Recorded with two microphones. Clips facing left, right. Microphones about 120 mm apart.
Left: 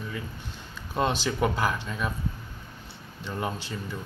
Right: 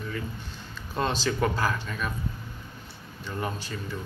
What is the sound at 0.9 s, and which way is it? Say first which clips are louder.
Speech: left 1 dB; 15° left (ahead or behind).